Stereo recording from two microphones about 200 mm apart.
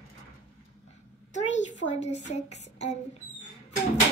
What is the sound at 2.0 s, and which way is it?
Speech, 35° left (ahead or behind).